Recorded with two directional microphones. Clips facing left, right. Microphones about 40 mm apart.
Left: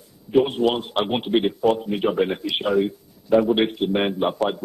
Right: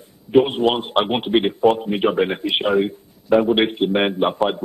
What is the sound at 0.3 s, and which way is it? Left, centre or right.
A man's voice, right.